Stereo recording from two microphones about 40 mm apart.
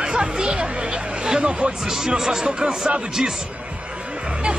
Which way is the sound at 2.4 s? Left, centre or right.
Right.